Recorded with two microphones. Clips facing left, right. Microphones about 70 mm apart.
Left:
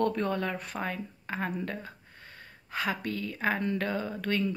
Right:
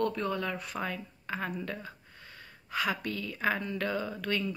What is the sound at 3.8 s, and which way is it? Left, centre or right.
Speech, left.